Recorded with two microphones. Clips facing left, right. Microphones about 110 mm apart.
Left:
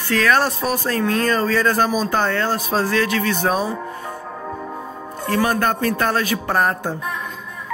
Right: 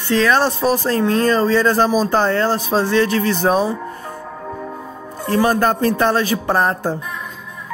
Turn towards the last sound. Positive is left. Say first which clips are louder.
# right 2 dB
turn(degrees=-30)  # may be behind; listen again after turning